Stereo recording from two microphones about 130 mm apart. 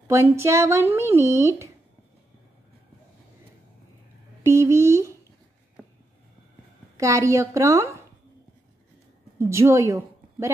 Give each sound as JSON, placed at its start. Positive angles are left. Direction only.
{"t": 0.1, "sound": "speech", "side_deg": -20}
{"t": 4.4, "sound": "speech", "side_deg": -20}
{"t": 7.0, "sound": "speech", "side_deg": -25}
{"t": 9.4, "sound": "a woman's voice", "side_deg": -20}